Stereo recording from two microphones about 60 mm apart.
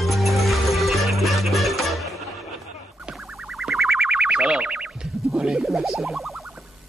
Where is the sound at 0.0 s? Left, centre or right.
Centre.